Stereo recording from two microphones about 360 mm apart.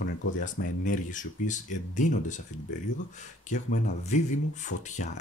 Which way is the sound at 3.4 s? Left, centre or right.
Centre.